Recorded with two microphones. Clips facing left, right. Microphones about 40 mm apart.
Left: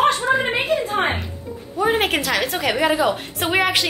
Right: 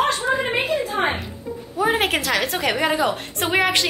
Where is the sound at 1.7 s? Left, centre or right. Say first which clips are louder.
Left 1 dB; centre.